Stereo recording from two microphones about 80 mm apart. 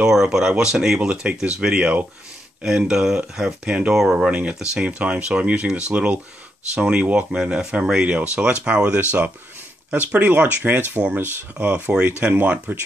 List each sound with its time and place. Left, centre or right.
0.0 s speech: centre
4.3 s speech: centre